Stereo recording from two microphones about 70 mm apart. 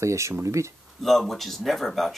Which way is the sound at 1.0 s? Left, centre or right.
Centre.